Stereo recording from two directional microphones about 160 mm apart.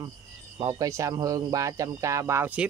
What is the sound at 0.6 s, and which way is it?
Speech, 25° right (ahead or behind).